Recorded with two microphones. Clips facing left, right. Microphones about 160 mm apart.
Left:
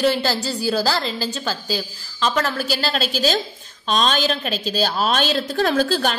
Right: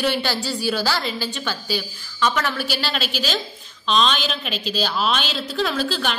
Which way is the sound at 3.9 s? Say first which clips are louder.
Left 1 dB; 45° left (ahead or behind).